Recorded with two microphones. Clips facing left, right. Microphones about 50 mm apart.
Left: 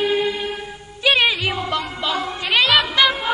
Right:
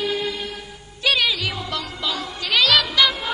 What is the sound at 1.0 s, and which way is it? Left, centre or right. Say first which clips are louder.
Music: left 3 dB; left.